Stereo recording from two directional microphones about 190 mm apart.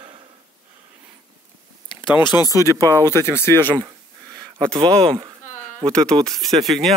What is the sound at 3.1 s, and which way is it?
Speech, 10° left (ahead or behind).